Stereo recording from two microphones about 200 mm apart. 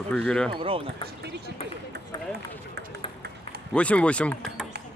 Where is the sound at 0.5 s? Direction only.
25° right (ahead or behind).